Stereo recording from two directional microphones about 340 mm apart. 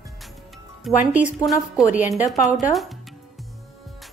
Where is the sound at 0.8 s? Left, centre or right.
Centre.